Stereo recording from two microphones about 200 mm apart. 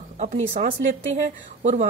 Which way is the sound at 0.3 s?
40° right (ahead or behind).